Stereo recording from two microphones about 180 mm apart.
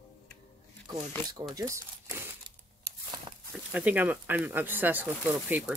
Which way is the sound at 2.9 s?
65° right (ahead or behind).